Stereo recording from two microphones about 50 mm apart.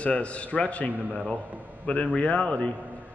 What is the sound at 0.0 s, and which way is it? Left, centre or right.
Speech, left.